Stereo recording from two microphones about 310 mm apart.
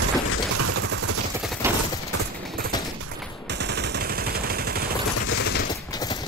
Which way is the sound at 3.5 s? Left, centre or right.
Right.